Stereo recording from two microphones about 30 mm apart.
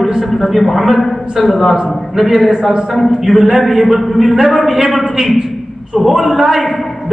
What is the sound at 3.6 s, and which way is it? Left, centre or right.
A man's voice, centre.